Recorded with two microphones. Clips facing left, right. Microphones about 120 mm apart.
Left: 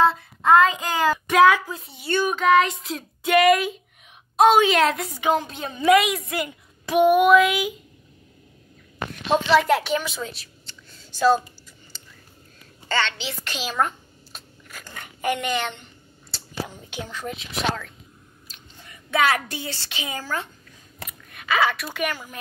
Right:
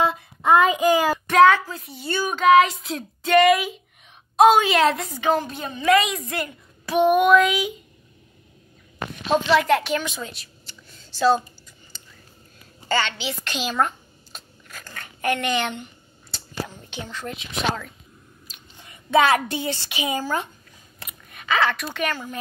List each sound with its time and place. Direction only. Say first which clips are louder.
0.0 s child singing: left 2 dB; 15° right (ahead or behind)
1.3 s speech: right 2 dB; 5° left (ahead or behind)
1.7 s speech: left 1 dB; 25° left (ahead or behind)
2.0 s speech: left 2 dB; centre (ahead or behind)
5.2 s a child's voice: even; 15° left (ahead or behind)
6.4 s a child's voice: left 1 dB; 15° left (ahead or behind)
9.3 s a woman's voice: even; centre (ahead or behind)
12.8 s a sound: right 1 dB; 5° right (ahead or behind)
16.6 s a child's voice: left 1 dB; 10° left (ahead or behind)
17.4 s speech: right 1 dB; 5° right (ahead or behind)
18.5 s speech: left 2 dB; 25° right (ahead or behind)
21.3 s a sound: right 1 dB; centre (ahead or behind)
21.5 s a child's voice: even; 10° left (ahead or behind)